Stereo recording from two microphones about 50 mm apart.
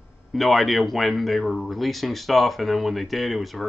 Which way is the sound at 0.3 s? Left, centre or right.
Centre.